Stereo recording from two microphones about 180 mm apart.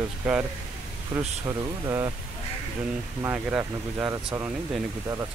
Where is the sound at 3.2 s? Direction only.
10° right (ahead or behind).